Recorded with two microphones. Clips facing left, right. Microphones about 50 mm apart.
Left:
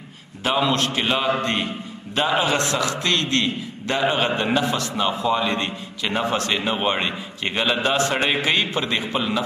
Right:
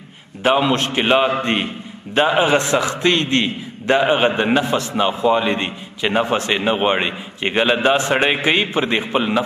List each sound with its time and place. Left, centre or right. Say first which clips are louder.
0.4 s a man's voice: right 4 dB; right